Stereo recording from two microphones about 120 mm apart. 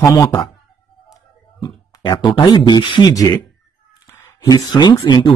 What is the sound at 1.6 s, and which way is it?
Speech, 35° left (ahead or behind).